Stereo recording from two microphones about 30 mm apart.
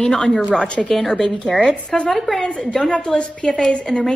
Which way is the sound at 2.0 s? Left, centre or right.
Centre.